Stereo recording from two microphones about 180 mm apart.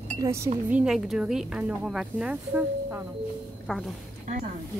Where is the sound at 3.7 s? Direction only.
5° left (ahead or behind).